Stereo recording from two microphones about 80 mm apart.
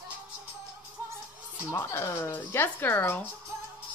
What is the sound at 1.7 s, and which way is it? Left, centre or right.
Music, left.